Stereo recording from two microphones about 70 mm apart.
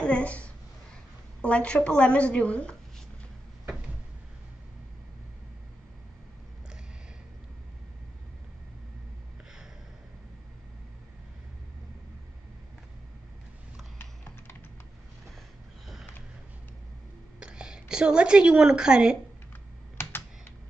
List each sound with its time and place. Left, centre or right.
0.0 s a sound: centre
1.4 s a woman's voice: centre
17.4 s speech: centre
20.0 s computer keyboard: left